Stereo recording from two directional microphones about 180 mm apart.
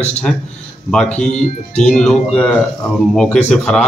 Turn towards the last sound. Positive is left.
turn(degrees=5)  # may be behind; listen again after turning